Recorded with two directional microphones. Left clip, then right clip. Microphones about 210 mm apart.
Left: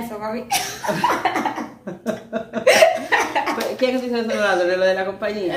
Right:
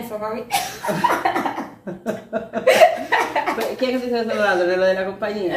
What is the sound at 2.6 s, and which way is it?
Hiccup, 55° left (ahead or behind).